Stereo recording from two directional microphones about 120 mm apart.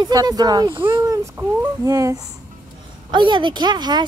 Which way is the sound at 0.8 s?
20° right (ahead or behind).